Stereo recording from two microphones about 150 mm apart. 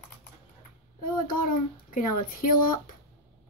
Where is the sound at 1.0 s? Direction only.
70° left (ahead or behind).